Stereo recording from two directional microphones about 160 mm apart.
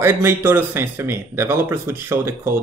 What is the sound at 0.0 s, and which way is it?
Speech, 15° right (ahead or behind).